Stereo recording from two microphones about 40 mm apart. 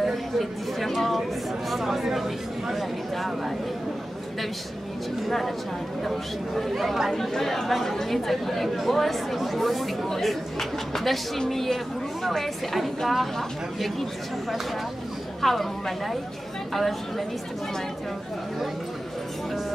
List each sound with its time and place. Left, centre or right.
0.0 s a sound: centre
5.2 s speech: centre
7.1 s speech: centre
15.4 s speech: centre